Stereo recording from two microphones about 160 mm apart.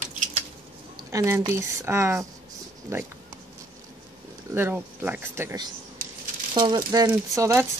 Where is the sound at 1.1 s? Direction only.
20° right (ahead or behind).